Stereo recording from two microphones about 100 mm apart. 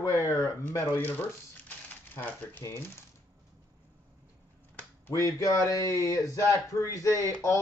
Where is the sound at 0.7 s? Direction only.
25° left (ahead or behind).